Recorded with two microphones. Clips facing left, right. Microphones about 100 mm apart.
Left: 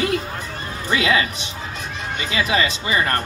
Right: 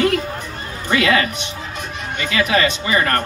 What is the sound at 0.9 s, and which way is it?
Speech, 50° right (ahead or behind).